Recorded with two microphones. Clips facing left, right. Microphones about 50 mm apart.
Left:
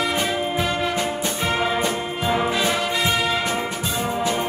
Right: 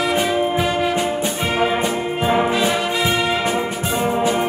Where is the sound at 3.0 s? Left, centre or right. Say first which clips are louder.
Right 3 dB; right.